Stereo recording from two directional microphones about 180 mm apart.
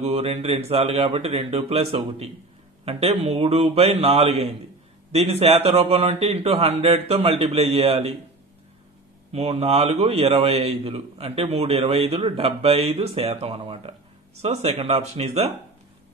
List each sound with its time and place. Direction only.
0.0 s a man's voice: 35° right (ahead or behind)
9.3 s a man's voice: 35° right (ahead or behind)